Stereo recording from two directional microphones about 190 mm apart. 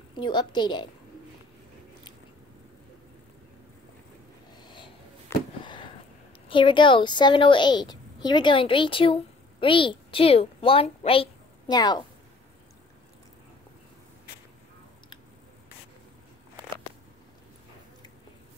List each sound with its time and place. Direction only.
0.1 s a woman's voice: 25° left (ahead or behind)
5.6 s a sound: 25° left (ahead or behind)
6.5 s a woman's voice: 25° left (ahead or behind)